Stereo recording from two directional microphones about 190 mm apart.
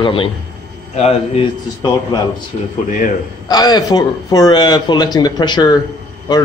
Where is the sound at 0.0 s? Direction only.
30° left (ahead or behind).